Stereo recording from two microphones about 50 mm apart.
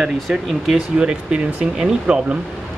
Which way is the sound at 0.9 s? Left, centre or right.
Centre.